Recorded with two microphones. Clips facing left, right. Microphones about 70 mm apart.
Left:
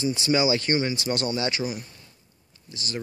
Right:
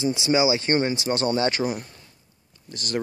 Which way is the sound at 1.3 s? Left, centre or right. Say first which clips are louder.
Right 4 dB; right.